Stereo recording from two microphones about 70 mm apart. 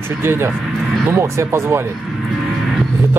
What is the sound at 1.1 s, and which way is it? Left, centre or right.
Speech, right.